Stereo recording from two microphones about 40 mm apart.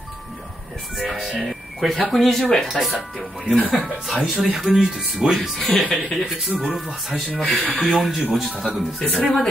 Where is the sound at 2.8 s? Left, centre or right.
Left.